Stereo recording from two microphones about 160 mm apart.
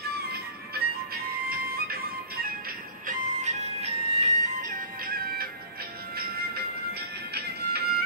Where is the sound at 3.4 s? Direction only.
45° right (ahead or behind); by 6.6 s 75° right (ahead or behind).